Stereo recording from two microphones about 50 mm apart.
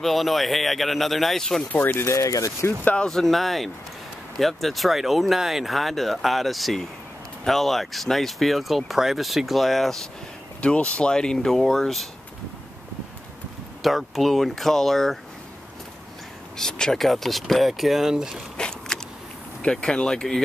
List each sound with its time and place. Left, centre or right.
0.0 s speech: centre
1.7 s speech: left
2.0 s speech: left
3.0 s speech: centre
10.6 s speech: left; by 12.1 s centre
13.8 s speech: centre
16.5 s speech: centre
17.0 s speech: centre
18.6 s biting: centre
19.6 s speech: centre